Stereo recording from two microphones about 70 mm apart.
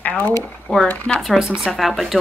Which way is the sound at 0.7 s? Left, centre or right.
Centre.